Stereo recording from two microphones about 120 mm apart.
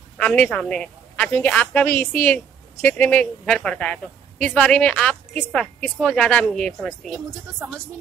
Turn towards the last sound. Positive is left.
turn(degrees=5)  # may be behind; listen again after turning